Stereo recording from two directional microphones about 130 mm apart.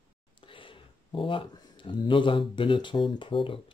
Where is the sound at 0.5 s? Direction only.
40° left (ahead or behind).